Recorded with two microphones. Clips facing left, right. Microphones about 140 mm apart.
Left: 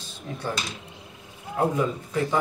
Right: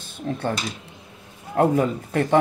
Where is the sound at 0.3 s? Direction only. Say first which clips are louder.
Right 8 dB; 55° right (ahead or behind).